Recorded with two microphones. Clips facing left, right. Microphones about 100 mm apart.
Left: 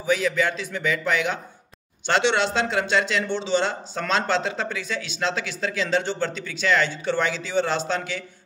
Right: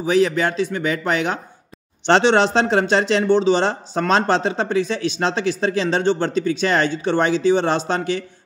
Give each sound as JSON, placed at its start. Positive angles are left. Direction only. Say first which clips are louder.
{"t": 0.1, "sound": "speech", "louder": "right 5 dB", "side_deg": -35}